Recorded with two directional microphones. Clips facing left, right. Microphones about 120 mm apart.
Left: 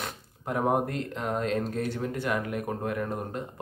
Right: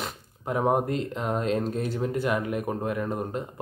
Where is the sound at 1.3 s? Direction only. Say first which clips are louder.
Right 2 dB; 25° right (ahead or behind).